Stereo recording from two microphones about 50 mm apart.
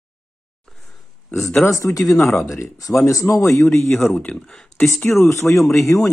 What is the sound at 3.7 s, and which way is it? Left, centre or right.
Speech, left.